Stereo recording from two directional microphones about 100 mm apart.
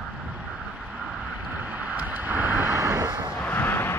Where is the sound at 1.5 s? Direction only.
15° right (ahead or behind); by 3.3 s 35° right (ahead or behind).